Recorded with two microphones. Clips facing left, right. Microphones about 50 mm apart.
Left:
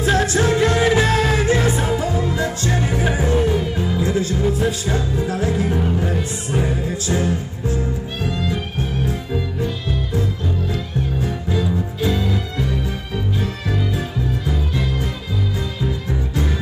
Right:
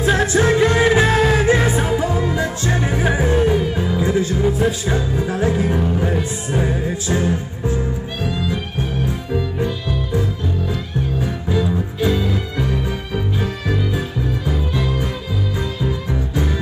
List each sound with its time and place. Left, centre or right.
0.0 s music: centre
12.1 s music: centre
13.7 s music: centre